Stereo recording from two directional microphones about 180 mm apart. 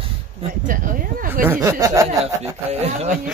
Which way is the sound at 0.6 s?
50° right (ahead or behind).